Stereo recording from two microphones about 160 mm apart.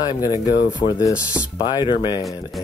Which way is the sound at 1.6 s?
30° left (ahead or behind).